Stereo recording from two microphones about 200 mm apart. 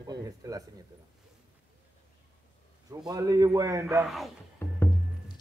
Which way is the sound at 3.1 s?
15° right (ahead or behind).